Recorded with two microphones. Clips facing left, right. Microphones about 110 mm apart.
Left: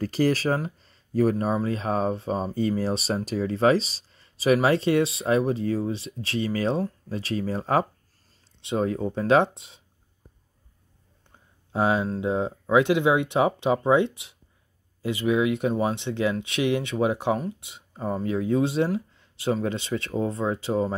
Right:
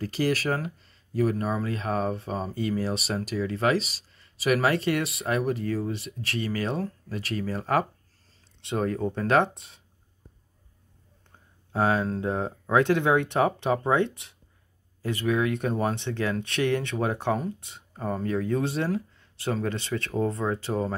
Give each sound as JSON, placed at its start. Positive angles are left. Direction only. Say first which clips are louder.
{"t": 0.0, "sound": "speech", "louder": "left 4 dB", "side_deg": 40}
{"t": 0.3, "sound": "speech", "louder": "left 2 dB", "side_deg": 25}
{"t": 8.5, "sound": "speech", "louder": "left 2 dB", "side_deg": 15}
{"t": 11.7, "sound": "speech", "louder": "left 1 dB", "side_deg": 15}